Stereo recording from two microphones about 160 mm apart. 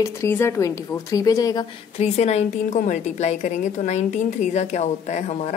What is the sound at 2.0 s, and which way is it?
A woman's voice, 45° left (ahead or behind).